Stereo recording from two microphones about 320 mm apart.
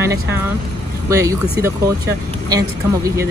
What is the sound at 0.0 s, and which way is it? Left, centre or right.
Speech, centre.